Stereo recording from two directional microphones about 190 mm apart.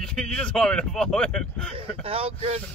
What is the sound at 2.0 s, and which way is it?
Speech, 30° right (ahead or behind).